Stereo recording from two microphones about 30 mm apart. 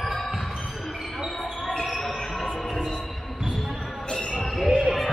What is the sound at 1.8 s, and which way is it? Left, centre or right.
Basketball bounce, centre.